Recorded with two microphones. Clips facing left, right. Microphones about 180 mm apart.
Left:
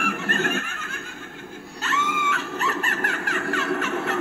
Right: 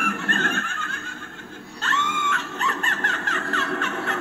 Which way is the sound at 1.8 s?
5° left (ahead or behind).